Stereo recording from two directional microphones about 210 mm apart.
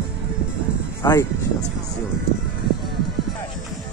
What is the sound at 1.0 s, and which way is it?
Speech, 15° left (ahead or behind).